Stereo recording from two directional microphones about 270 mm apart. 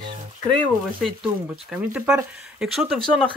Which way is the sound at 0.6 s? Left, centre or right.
Centre.